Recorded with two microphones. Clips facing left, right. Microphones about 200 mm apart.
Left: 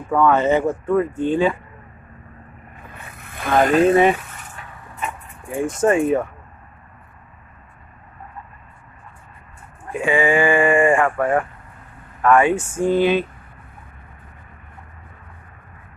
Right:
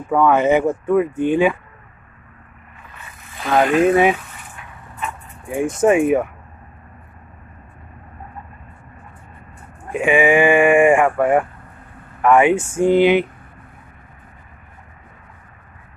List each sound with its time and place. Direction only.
0.1 s speech: 15° right (ahead or behind)
3.0 s vehicle: 60° left (ahead or behind)
3.6 s speech: 35° left (ahead or behind)
3.9 s speech: 5° right (ahead or behind)
5.8 s speech: 15° right (ahead or behind)
9.9 s speech: 20° right (ahead or behind)